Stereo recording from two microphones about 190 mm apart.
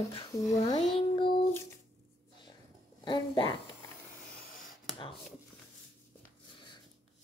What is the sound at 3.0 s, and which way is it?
Speech, 25° left (ahead or behind).